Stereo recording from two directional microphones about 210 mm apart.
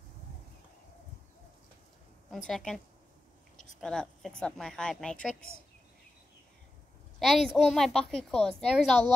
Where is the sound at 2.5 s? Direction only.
Centre (ahead or behind).